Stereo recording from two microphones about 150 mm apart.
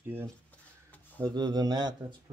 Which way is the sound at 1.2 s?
30° right (ahead or behind).